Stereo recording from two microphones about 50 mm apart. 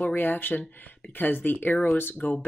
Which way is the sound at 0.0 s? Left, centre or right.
Left.